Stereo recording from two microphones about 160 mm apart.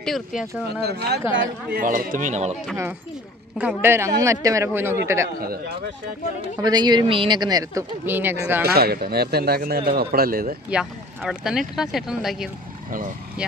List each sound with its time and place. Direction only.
0.0 s speech: centre (ahead or behind)
0.8 s speech: 90° right
1.7 s speech: 60° right (ahead or behind)
2.7 s a man's voice: 15° right (ahead or behind)
5.4 s a man's voice: 70° right (ahead or behind)
6.6 s speech: 25° right (ahead or behind)
8.0 s a man's voice: 10° right (ahead or behind)
8.6 s a man's voice: 75° right (ahead or behind)
10.7 s speech: 5° right (ahead or behind)